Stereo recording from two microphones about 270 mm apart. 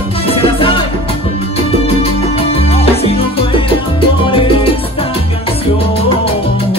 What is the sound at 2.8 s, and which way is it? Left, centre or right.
Music, left.